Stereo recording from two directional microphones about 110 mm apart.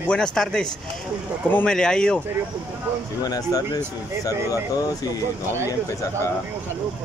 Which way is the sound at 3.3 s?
35° left (ahead or behind).